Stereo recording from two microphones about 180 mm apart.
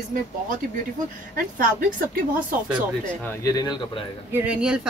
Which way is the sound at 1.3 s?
55° right (ahead or behind).